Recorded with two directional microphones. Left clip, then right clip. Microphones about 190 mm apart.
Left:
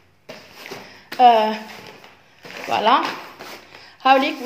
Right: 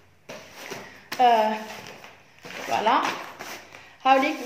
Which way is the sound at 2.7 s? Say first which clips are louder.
Left 6 dB; 55° left (ahead or behind).